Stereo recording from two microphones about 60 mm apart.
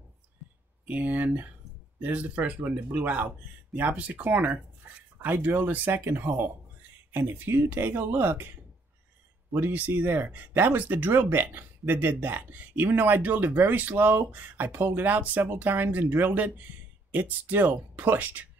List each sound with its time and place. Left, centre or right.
0.8 s speech: right
9.5 s speech: right